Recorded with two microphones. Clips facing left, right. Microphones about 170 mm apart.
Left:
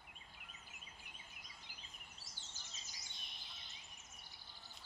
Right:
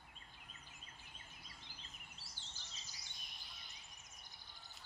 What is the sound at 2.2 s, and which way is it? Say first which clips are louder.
Bird vocalization: even; 45° left (ahead or behind).